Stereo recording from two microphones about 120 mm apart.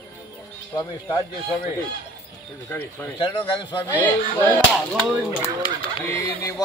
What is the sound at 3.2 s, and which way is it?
Speech, 45° left (ahead or behind).